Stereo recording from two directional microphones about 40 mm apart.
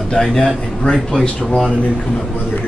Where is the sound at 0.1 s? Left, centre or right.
Centre.